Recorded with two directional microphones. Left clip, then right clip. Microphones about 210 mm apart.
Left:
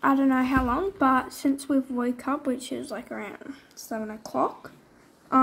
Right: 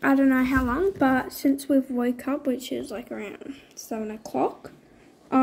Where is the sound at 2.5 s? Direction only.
45° left (ahead or behind).